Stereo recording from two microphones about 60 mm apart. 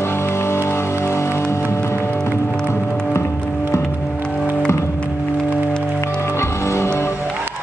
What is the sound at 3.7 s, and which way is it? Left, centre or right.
Music, left.